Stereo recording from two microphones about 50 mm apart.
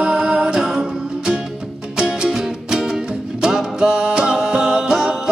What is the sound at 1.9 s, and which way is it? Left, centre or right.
Music, centre.